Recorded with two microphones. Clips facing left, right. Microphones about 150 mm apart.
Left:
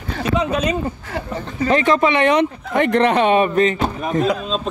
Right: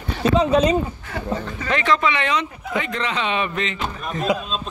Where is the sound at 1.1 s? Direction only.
35° left (ahead or behind).